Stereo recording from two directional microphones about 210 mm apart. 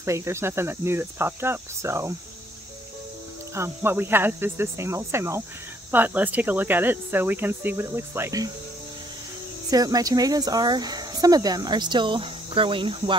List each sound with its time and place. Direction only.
0.0 s cricket: 15° right (ahead or behind)
3.5 s cricket: 10° right (ahead or behind)
9.7 s speech: 15° right (ahead or behind)